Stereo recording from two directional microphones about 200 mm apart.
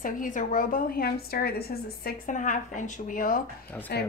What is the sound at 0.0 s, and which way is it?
A woman's voice, 40° left (ahead or behind).